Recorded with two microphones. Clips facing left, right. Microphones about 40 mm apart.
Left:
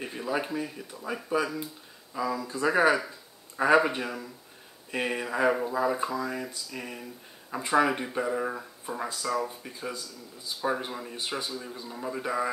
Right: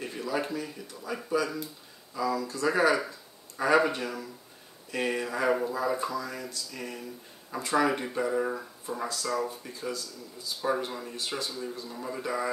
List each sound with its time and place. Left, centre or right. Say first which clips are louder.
0.0 s speech: left 1 dB; centre